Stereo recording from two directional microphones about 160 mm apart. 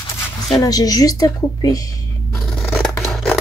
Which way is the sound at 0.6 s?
25° left (ahead or behind).